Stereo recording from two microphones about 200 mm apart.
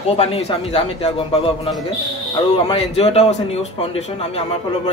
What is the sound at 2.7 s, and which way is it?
Speech, 30° left (ahead or behind).